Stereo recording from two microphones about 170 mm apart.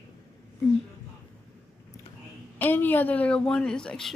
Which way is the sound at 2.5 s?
10° left (ahead or behind).